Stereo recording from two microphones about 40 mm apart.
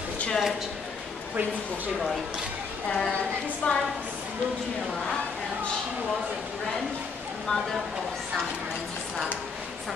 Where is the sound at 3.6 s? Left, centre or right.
Left.